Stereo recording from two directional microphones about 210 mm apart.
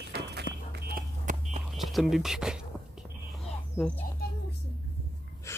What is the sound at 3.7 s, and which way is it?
Speech, 5° left (ahead or behind).